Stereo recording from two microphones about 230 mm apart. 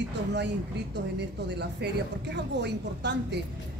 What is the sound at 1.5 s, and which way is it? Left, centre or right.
A woman's voice, right.